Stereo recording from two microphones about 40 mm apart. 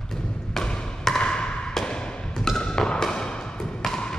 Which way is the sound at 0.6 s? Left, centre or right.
Left.